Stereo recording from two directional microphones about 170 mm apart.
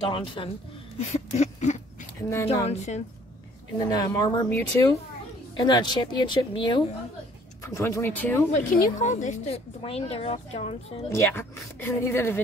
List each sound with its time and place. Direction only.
0.0 s speech: 30° left (ahead or behind)
1.1 s a sound: 45° left (ahead or behind)
2.2 s a woman's voice: 15° left (ahead or behind)
2.6 s a woman's voice: 40° left (ahead or behind)
3.8 s a woman's voice: 20° left (ahead or behind)
8.5 s a woman's voice: 50° left (ahead or behind)
11.1 s a woman's voice: 15° left (ahead or behind)